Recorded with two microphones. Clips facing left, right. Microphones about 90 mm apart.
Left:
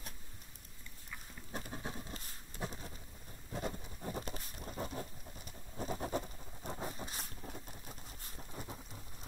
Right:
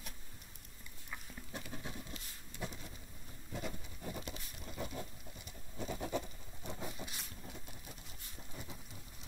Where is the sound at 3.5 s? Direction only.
35° left (ahead or behind).